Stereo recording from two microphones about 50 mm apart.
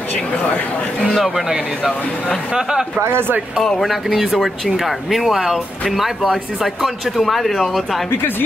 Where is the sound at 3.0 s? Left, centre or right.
Right.